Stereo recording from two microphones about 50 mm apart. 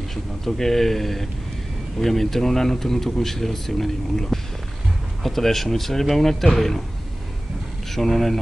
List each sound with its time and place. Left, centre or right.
0.1 s speech: centre
7.9 s speech: centre